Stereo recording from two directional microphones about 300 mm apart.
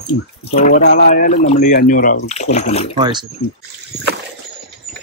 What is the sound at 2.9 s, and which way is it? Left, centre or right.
Speech, centre.